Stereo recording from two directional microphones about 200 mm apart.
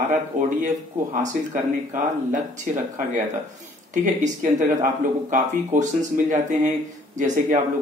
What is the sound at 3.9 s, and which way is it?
Speech, 40° right (ahead or behind).